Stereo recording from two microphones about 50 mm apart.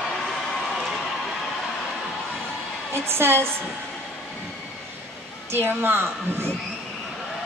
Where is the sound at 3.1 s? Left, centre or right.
Right.